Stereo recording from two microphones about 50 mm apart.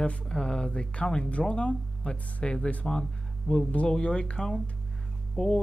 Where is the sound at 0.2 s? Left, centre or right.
Centre.